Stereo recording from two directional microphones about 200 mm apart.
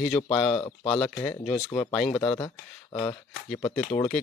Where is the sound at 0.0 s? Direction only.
Centre (ahead or behind).